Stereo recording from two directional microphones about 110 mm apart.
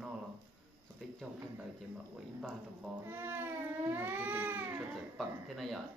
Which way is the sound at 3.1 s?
20° right (ahead or behind).